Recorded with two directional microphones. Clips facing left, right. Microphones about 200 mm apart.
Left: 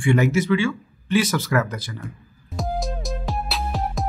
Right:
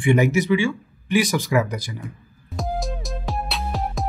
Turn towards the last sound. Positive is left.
turn(degrees=0)  # may be behind; listen again after turning